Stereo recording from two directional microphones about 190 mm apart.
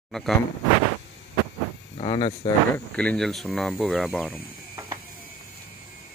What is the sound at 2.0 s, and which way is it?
Speech, 30° left (ahead or behind).